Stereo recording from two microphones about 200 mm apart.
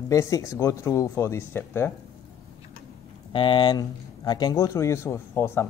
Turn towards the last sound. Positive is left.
turn(degrees=10)  # may be behind; listen again after turning